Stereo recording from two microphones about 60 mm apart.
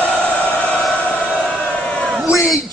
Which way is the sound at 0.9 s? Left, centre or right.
Left.